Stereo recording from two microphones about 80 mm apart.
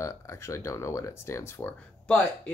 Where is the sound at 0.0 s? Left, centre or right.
Left.